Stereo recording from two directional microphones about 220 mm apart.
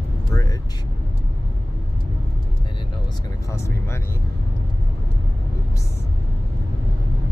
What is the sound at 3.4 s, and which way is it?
Speech, 10° left (ahead or behind).